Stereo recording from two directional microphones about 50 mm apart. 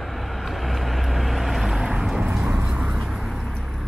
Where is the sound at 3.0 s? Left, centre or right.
Centre.